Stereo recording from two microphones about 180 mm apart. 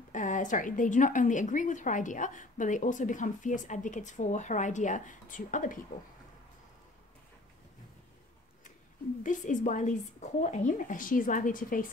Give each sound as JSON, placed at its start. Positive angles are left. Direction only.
{"t": 0.1, "sound": "a woman's voice", "side_deg": 45}
{"t": 9.2, "sound": "a woman's voice", "side_deg": 45}